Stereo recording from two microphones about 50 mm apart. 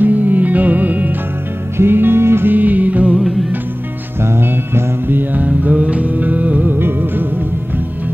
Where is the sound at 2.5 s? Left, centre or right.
Right.